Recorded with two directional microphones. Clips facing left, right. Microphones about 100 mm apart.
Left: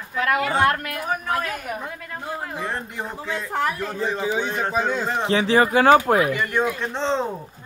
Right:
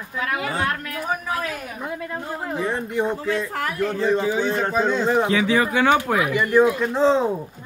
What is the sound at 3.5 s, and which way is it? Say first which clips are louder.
Speech: even; 25° left (ahead or behind).